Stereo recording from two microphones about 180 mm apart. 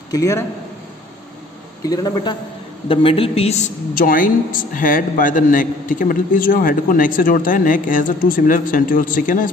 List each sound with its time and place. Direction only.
0.1 s a man's voice: 20° left (ahead or behind)
1.9 s a man's voice: 25° left (ahead or behind); by 9.5 s 50° left (ahead or behind)